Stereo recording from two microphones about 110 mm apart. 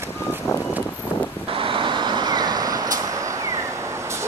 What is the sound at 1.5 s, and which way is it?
Vehicle, 55° right (ahead or behind).